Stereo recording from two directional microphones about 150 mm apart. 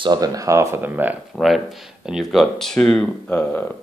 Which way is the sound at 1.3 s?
Centre (ahead or behind).